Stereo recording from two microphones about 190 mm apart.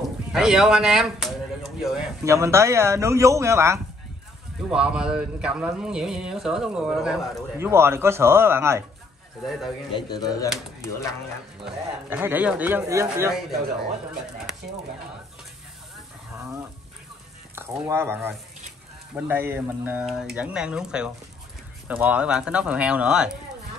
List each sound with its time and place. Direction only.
0.3 s speech: centre (ahead or behind)
2.2 s speech: 15° right (ahead or behind)
4.6 s speech: 5° right (ahead or behind)
9.9 s speech: 20° left (ahead or behind)
12.1 s speech: 10° right (ahead or behind)
16.3 s wild animals: 15° right (ahead or behind)
17.6 s speech: 10° right (ahead or behind)